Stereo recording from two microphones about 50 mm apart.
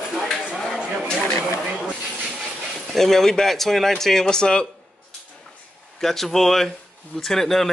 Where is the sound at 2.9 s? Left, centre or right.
Centre.